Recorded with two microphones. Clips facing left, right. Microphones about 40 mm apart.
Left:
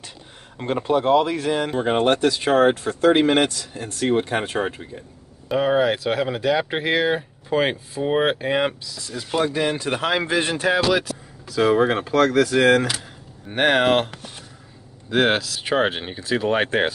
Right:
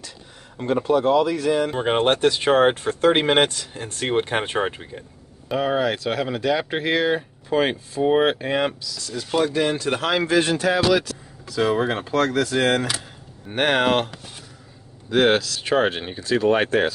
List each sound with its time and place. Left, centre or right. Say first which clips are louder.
0.8 s speech: left 1 dB; left
1.8 s speech: even; right
5.5 s speech: left 3 dB; centre